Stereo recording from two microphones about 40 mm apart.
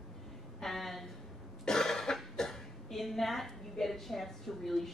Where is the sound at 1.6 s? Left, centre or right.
Centre.